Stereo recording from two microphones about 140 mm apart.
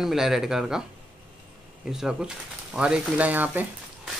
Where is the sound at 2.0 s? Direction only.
5° right (ahead or behind).